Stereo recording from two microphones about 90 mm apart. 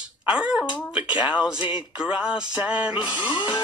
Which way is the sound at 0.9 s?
15° right (ahead or behind).